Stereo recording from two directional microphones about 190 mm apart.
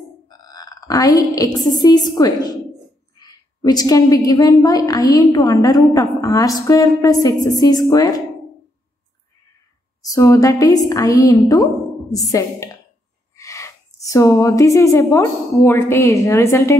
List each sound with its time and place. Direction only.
0.3 s a woman's voice: 20° left (ahead or behind)
10.0 s a woman's voice: 15° left (ahead or behind)